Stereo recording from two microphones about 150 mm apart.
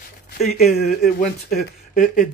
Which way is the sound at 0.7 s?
80° left.